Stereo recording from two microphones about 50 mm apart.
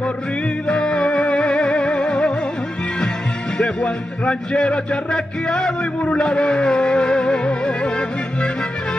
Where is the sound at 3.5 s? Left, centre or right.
Centre.